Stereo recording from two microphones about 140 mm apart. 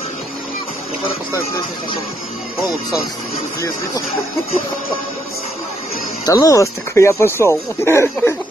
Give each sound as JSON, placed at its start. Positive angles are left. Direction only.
{"t": 6.2, "sound": "speech", "side_deg": 25}